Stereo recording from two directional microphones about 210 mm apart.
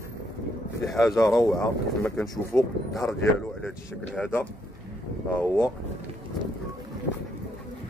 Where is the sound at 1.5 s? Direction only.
Centre (ahead or behind).